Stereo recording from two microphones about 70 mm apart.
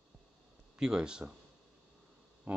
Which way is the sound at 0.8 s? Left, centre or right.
Centre.